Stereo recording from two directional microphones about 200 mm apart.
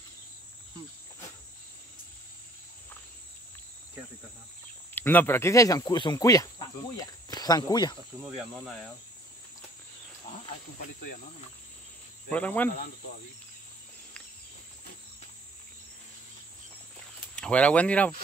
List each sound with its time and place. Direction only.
4.9 s speech: 10° left (ahead or behind)
12.3 s speech: 10° left (ahead or behind)
17.4 s speech: 5° left (ahead or behind)